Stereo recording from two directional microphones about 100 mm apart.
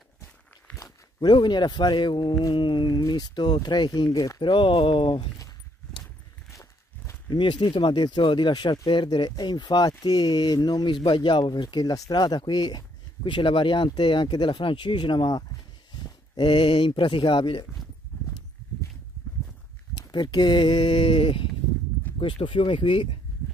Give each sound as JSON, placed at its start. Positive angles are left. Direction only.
{"t": 0.7, "sound": "a sound", "side_deg": 10}
{"t": 1.2, "sound": "speech", "side_deg": 50}
{"t": 4.1, "sound": "speech", "side_deg": 35}
{"t": 4.4, "sound": "speech", "side_deg": 55}
{"t": 6.5, "sound": "walk", "side_deg": 30}
{"t": 7.2, "sound": "speech", "side_deg": 50}
{"t": 20.0, "sound": "speech", "side_deg": 50}